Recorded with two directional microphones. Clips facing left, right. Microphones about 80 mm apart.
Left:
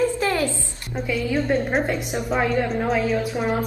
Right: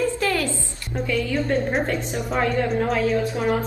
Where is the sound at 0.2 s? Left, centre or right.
Left.